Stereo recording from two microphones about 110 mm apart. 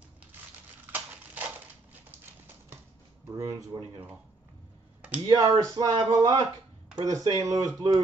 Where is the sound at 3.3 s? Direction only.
30° right (ahead or behind).